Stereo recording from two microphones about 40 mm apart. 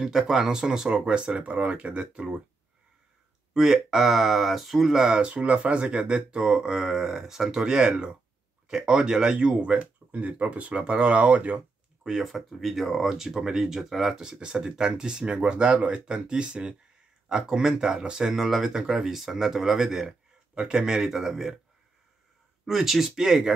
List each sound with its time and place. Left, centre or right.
0.0 s speech: centre; by 2.4 s right
3.5 s speech: centre
4.9 s speech: centre
5.3 s speech: right
12.0 s speech: centre
12.3 s speech: centre
14.4 s speech: centre
18.2 s speech: centre
22.7 s speech: centre